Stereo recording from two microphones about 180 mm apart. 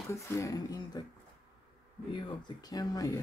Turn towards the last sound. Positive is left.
turn(degrees=20)  # may be behind; listen again after turning